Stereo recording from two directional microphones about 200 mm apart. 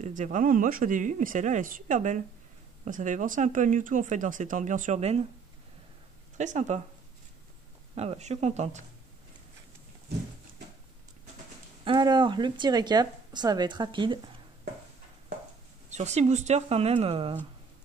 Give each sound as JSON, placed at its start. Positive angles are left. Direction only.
{"t": 0.0, "sound": "speech", "side_deg": -40}
{"t": 6.3, "sound": "speech", "side_deg": -35}
{"t": 7.9, "sound": "speech", "side_deg": -30}
{"t": 11.8, "sound": "speech", "side_deg": -25}
{"t": 15.9, "sound": "speech", "side_deg": -35}